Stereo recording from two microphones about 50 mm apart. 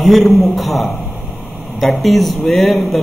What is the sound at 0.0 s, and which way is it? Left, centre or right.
A man's voice, centre.